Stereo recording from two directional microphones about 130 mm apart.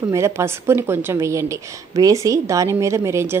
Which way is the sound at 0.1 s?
20° right (ahead or behind).